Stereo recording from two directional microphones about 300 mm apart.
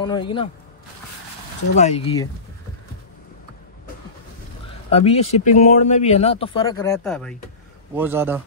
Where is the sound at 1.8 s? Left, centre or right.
Left.